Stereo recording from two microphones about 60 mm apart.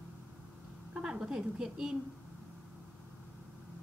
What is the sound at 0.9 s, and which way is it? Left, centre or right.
A woman's voice, centre.